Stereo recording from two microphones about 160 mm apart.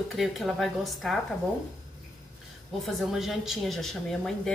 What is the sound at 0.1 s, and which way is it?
Speech, centre (ahead or behind).